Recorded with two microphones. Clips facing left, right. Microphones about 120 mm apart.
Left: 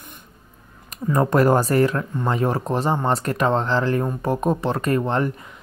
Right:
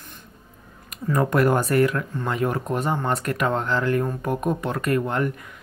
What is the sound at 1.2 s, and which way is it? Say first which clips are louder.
Speech: left 3 dB; 35° left (ahead or behind).